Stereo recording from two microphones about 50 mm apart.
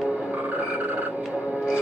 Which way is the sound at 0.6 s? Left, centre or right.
Right.